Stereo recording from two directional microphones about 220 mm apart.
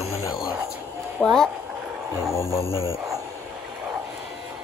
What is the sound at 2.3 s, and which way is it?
Music, 10° left (ahead or behind).